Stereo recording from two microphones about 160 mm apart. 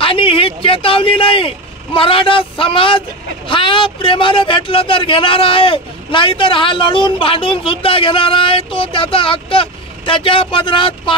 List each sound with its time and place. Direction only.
0.0 s a man's voice: 35° left (ahead or behind)